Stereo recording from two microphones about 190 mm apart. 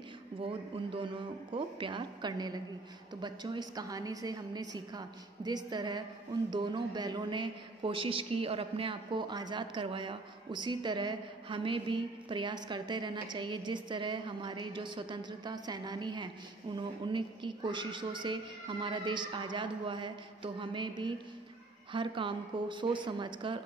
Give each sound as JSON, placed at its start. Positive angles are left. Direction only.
{"t": 0.5, "sound": "a man's voice", "side_deg": -25}